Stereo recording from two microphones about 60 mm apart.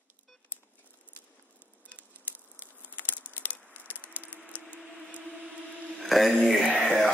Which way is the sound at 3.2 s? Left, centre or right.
Left.